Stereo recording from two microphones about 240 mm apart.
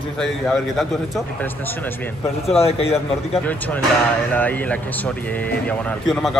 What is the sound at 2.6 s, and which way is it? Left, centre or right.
Speech, left.